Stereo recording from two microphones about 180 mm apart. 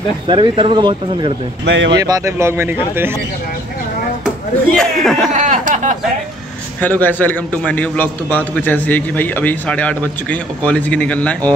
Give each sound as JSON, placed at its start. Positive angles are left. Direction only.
{"t": 0.3, "sound": "speech", "side_deg": -30}
{"t": 1.7, "sound": "speech", "side_deg": -75}
{"t": 2.0, "sound": "speech", "side_deg": -20}
{"t": 4.7, "sound": "speech", "side_deg": 0}
{"t": 5.3, "sound": "a sound", "side_deg": -45}
{"t": 6.8, "sound": "a man's voice", "side_deg": 10}